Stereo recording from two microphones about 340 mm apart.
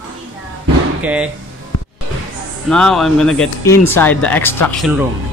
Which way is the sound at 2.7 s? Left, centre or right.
Centre.